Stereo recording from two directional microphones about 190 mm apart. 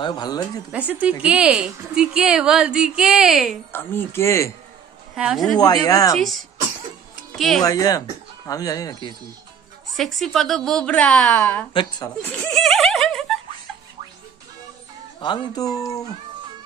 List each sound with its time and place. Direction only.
0.0 s speech: 25° left (ahead or behind)
0.7 s speech: 5° right (ahead or behind)
3.7 s speech: 10° left (ahead or behind)
5.1 s speech: centre (ahead or behind)
5.9 s speech: 20° left (ahead or behind)
6.1 s speech: centre (ahead or behind)
7.6 s speech: 20° left (ahead or behind)
9.9 s speech: centre (ahead or behind)
11.7 s speech: 25° left (ahead or behind)
12.3 s a sound: 10° left (ahead or behind)
15.1 s speech: 20° left (ahead or behind)